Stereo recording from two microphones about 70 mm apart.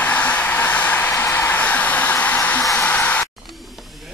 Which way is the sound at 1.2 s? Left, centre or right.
Left.